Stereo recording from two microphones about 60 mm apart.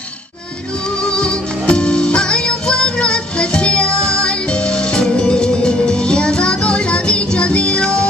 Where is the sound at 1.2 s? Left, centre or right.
Centre.